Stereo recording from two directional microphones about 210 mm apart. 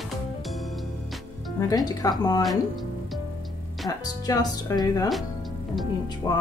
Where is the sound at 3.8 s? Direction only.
15° left (ahead or behind).